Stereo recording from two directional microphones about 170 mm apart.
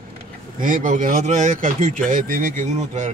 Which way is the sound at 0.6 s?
50° right (ahead or behind).